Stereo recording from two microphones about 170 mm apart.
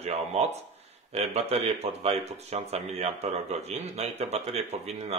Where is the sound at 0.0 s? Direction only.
40° right (ahead or behind).